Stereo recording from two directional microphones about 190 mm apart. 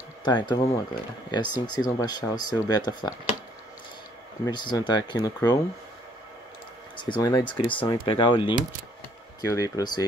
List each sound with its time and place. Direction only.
0.2 s speech: 25° left (ahead or behind)
4.5 s speech: 25° left (ahead or behind)
7.1 s speech: 20° left (ahead or behind)